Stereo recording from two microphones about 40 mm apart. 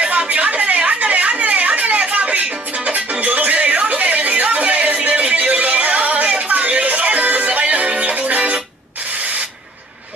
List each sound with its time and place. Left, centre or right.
0.3 s a sound: right
2.8 s music: right
8.1 s music: right